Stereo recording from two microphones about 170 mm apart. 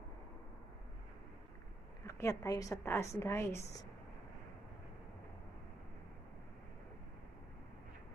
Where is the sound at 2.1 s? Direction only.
15° left (ahead or behind).